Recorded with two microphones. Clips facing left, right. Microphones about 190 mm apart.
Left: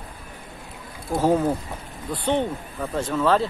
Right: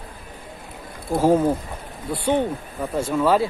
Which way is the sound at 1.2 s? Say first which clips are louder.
Right 3 dB; 15° right (ahead or behind).